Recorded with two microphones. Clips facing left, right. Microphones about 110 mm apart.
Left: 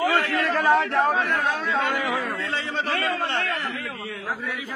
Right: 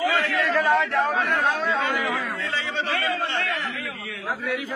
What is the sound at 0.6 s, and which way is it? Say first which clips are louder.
Speech: left 1 dB; 30° left (ahead or behind).